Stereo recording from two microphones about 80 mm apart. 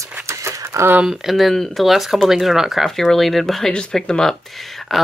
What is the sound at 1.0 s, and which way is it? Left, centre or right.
Speech, centre.